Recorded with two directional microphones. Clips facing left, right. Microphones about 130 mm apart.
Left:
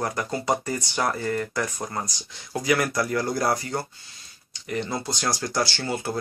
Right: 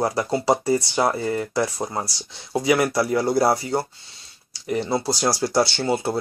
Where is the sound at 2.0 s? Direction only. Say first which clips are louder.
Right 3 dB; 30° right (ahead or behind).